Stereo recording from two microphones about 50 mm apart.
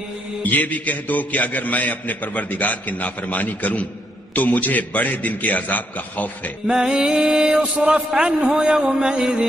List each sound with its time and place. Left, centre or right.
0.4 s a man's voice: left
6.7 s mantra: centre